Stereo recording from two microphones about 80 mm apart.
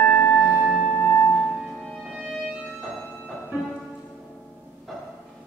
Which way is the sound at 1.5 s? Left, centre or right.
Centre.